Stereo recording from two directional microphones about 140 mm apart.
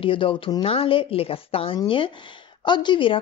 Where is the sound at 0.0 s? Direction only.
40° left (ahead or behind).